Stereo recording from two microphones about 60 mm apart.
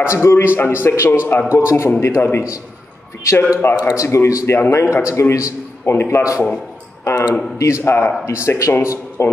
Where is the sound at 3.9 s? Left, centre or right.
Left.